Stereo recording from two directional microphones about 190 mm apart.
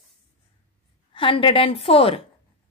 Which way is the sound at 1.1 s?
25° left (ahead or behind).